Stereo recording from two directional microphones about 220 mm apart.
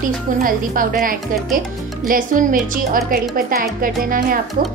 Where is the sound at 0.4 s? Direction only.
40° right (ahead or behind).